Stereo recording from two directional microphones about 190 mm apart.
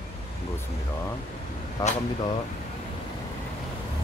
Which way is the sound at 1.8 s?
20° left (ahead or behind).